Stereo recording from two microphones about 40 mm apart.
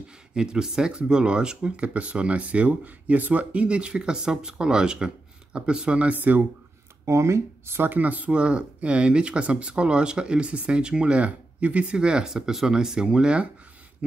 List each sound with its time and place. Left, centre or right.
0.3 s speech: centre; by 3.6 s right
3.6 s speech: right
6.1 s speech: right
7.6 s speech: right
7.9 s speech: right
8.3 s speech: right
11.9 s speech: right